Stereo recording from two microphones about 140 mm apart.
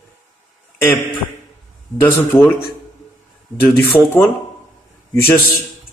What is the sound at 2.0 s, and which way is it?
Speech, 15° left (ahead or behind).